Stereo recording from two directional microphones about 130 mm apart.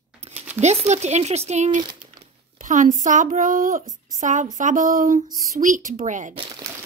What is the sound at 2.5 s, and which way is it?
Speech, 90° right.